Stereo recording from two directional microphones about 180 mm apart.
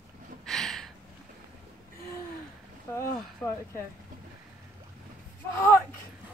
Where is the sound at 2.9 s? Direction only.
15° left (ahead or behind).